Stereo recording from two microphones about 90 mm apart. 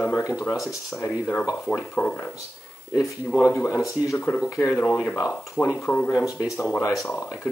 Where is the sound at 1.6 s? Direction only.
20° left (ahead or behind).